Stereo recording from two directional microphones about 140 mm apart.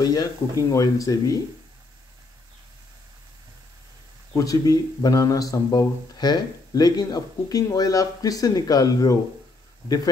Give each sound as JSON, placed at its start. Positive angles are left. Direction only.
{"t": 0.0, "sound": "speech", "side_deg": 25}
{"t": 4.3, "sound": "speech", "side_deg": 25}